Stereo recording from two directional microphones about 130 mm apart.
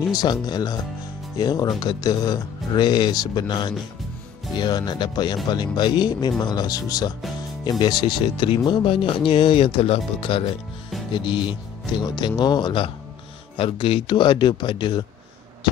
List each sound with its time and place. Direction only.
0.1 s speech: 30° left (ahead or behind)